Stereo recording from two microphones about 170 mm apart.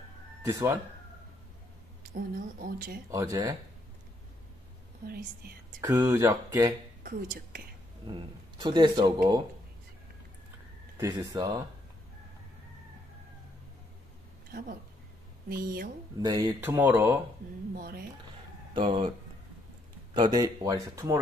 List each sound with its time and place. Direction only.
0.4 s speech: 15° right (ahead or behind)
2.6 s speech: 55° right (ahead or behind)
3.1 s speech: 20° right (ahead or behind)
5.0 s speech: 65° right (ahead or behind)
5.8 s speech: 15° right (ahead or behind)
7.0 s speech: 60° right (ahead or behind)
8.5 s speech: 25° right (ahead or behind)
11.1 s speech: 20° right (ahead or behind)
15.5 s speech: 65° right (ahead or behind)
16.2 s speech: 25° right (ahead or behind)
17.7 s speech: 60° right (ahead or behind)
18.7 s speech: 30° right (ahead or behind)
20.2 s speech: 25° right (ahead or behind)